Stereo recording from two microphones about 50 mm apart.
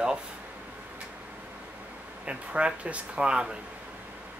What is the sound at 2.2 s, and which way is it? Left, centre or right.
Speech, right.